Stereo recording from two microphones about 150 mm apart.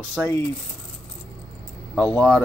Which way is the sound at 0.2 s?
5° left (ahead or behind).